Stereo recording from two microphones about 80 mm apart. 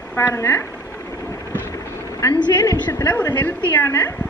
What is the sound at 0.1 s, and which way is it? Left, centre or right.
Speech, left.